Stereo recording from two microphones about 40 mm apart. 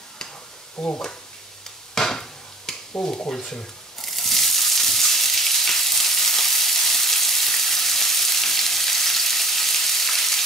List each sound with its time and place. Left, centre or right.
0.7 s speech: left
2.0 s a sound: centre
3.3 s frying: centre